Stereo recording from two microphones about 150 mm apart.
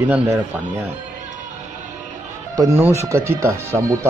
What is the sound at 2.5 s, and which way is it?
A man's voice, 20° right (ahead or behind).